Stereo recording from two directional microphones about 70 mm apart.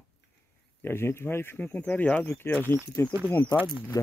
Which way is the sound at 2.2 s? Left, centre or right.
Left.